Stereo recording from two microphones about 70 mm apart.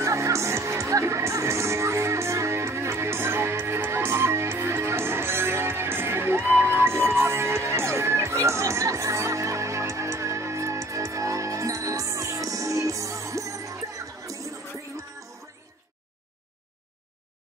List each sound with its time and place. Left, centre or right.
0.0 s music: right